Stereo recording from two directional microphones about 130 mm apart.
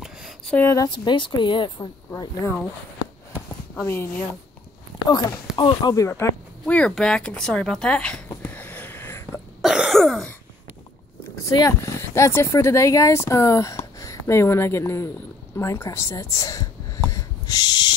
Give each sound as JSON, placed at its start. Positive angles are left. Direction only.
{"t": 0.0, "sound": "a sound", "side_deg": 0}
{"t": 0.6, "sound": "speech", "side_deg": 20}
{"t": 0.8, "sound": "speech", "side_deg": 35}
{"t": 3.3, "sound": "a sound", "side_deg": 15}
{"t": 5.0, "sound": "speech", "side_deg": 30}
{"t": 5.9, "sound": "speech", "side_deg": 20}
{"t": 6.6, "sound": "speech", "side_deg": 5}
{"t": 8.4, "sound": "a sound", "side_deg": 15}
{"t": 9.6, "sound": "cough", "side_deg": -5}
{"t": 11.5, "sound": "speech", "side_deg": 25}